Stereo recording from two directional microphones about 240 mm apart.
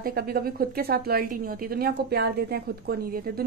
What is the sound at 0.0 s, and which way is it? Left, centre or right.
A woman's voice, right.